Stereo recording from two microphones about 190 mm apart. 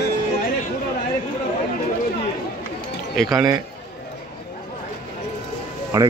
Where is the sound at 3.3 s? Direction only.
15° right (ahead or behind).